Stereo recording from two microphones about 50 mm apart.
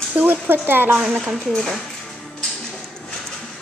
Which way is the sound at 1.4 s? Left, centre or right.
Centre.